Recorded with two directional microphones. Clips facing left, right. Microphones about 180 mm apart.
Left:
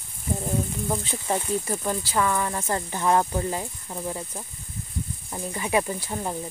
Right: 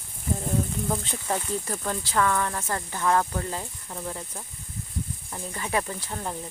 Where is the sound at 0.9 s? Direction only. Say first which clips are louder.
Left 1 dB; 5° left (ahead or behind).